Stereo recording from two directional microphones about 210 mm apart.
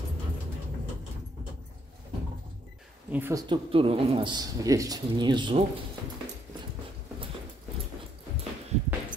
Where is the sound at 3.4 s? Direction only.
25° right (ahead or behind).